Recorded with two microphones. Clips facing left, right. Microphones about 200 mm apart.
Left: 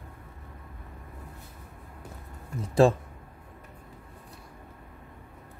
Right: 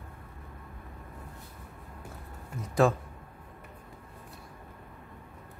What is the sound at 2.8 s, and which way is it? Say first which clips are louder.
Speech: left 4 dB; 30° left (ahead or behind).